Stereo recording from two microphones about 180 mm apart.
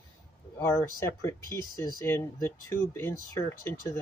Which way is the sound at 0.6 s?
15° left (ahead or behind).